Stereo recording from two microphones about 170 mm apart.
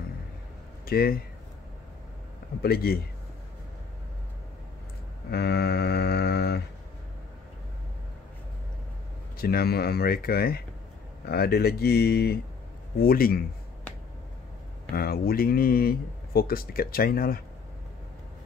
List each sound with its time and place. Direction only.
0.8 s speech: 60° left (ahead or behind)
2.6 s speech: 65° left (ahead or behind)
5.3 s a sound: 70° left (ahead or behind)
9.4 s speech: 65° left (ahead or behind)
15.0 s speech: 65° left (ahead or behind)